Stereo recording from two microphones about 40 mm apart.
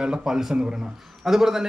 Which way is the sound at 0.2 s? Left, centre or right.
Centre.